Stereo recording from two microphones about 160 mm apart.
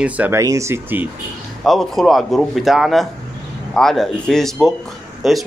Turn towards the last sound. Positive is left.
turn(degrees=0)  # may be behind; listen again after turning